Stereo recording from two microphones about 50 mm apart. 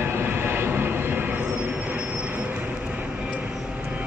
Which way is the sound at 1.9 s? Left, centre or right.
Right.